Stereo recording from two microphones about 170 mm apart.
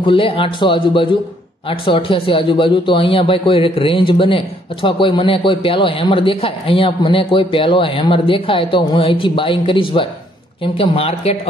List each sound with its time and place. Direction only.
0.0 s a man's voice: 30° left (ahead or behind)